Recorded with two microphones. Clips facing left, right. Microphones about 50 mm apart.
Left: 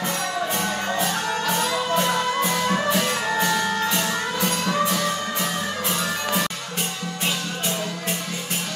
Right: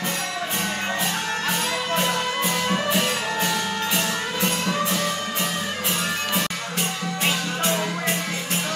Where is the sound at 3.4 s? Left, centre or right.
Centre.